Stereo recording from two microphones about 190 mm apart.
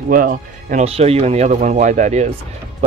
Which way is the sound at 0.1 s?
45° right (ahead or behind).